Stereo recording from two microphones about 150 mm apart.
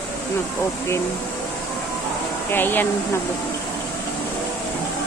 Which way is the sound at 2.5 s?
15° left (ahead or behind).